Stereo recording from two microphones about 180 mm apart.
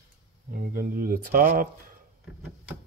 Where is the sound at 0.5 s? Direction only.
50° right (ahead or behind).